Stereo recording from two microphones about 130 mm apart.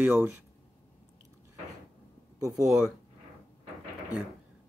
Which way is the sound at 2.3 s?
25° right (ahead or behind).